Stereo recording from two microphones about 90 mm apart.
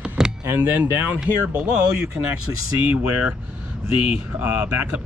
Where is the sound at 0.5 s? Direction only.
25° right (ahead or behind).